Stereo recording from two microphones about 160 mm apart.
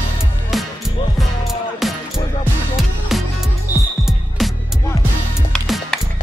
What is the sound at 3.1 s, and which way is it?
Music, centre (ahead or behind).